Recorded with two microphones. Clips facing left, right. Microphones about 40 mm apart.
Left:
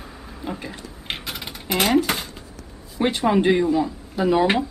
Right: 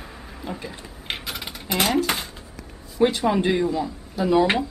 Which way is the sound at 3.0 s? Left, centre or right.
Centre.